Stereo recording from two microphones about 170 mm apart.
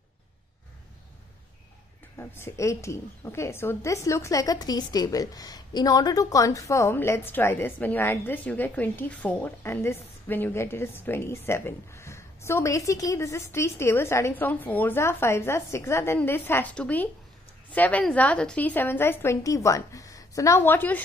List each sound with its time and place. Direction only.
2.1 s a woman's voice: 15° left (ahead or behind)